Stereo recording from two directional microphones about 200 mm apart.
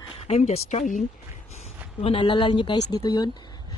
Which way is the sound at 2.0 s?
25° left (ahead or behind).